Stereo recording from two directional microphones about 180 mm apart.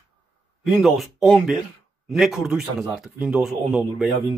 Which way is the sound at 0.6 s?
Centre (ahead or behind).